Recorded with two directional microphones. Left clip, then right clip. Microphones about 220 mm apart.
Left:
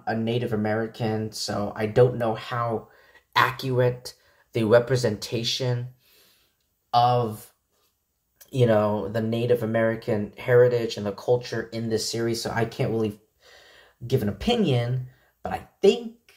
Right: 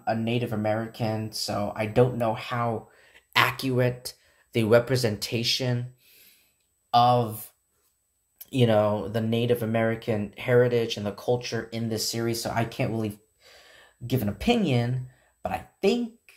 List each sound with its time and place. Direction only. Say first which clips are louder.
0.0 s speech: left 1 dB; 20° right (ahead or behind)
13.4 s gasp: left 1 dB; 25° right (ahead or behind)
15.4 s a sound: left 5 dB; 25° right (ahead or behind)